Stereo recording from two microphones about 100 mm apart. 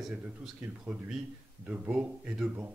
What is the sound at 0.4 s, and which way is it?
Speech, 10° right (ahead or behind).